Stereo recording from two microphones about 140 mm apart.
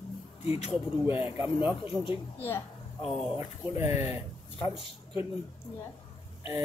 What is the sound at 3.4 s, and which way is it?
Speech, 20° right (ahead or behind).